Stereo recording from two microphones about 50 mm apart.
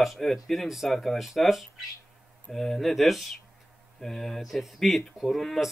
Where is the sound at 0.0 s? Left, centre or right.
Centre.